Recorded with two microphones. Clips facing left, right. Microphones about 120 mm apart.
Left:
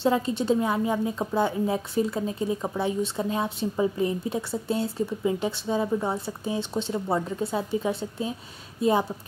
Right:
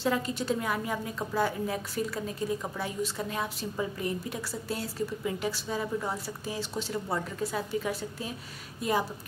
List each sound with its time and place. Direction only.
0.0 s a woman's voice: 25° left (ahead or behind)